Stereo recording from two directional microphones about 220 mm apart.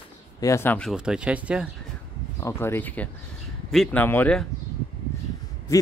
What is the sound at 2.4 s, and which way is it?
Speech, 10° left (ahead or behind).